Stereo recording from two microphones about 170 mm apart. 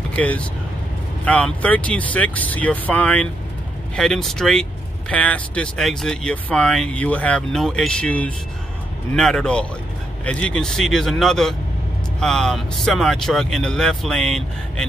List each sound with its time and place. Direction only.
0.1 s speech: 10° left (ahead or behind)